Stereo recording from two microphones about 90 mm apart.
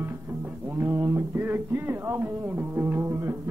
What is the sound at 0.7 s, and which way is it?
Speech, 30° right (ahead or behind).